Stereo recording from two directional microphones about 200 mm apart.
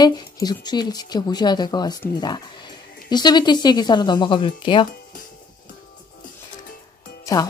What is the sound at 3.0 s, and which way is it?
Speech, 20° left (ahead or behind).